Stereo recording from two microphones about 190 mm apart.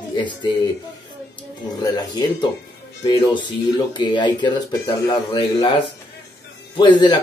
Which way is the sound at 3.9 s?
25° left (ahead or behind).